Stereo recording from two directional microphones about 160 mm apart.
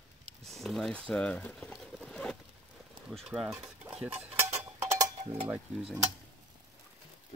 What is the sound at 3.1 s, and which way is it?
Speech, 5° right (ahead or behind).